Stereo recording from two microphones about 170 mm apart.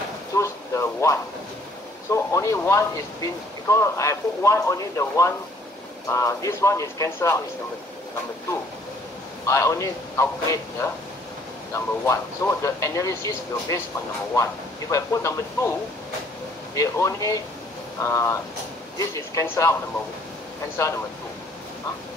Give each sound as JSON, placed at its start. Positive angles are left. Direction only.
{"t": 0.3, "sound": "a sound", "side_deg": 20}
{"t": 2.0, "sound": "speech", "side_deg": 15}
{"t": 9.5, "sound": "speech", "side_deg": 20}
{"t": 16.7, "sound": "speech", "side_deg": 20}